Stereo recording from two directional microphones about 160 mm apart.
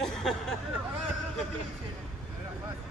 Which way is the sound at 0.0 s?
Centre (ahead or behind).